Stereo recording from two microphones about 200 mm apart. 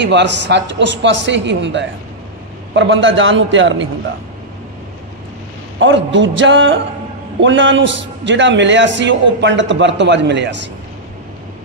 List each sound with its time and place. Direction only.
0.0 s a man's voice: 60° right (ahead or behind)
5.8 s a man's voice: 70° right (ahead or behind)